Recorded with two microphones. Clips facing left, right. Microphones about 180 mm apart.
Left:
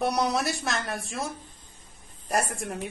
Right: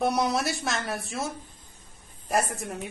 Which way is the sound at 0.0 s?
Centre (ahead or behind).